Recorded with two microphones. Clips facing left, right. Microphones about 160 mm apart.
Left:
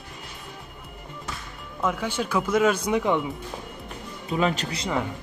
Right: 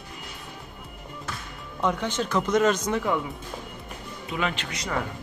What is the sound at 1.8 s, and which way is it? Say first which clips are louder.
Speech: even; 5° left (ahead or behind).